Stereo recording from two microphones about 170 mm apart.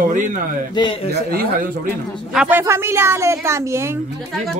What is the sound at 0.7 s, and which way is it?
Speech, 30° left (ahead or behind).